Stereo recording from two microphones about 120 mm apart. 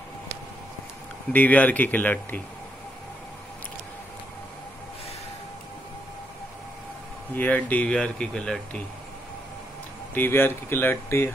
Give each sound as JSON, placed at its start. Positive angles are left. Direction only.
{"t": 1.3, "sound": "speech", "side_deg": 15}
{"t": 7.3, "sound": "speech", "side_deg": 15}
{"t": 10.1, "sound": "speech", "side_deg": 20}